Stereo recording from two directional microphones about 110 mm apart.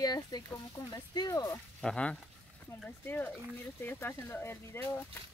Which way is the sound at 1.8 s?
10° left (ahead or behind).